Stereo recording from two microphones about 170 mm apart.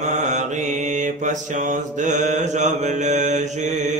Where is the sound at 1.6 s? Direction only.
45° right (ahead or behind).